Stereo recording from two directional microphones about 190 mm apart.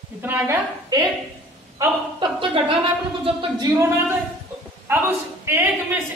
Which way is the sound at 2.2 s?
25° right (ahead or behind).